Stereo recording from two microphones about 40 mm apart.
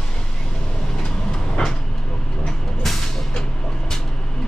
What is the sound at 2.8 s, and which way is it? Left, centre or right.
Music, centre.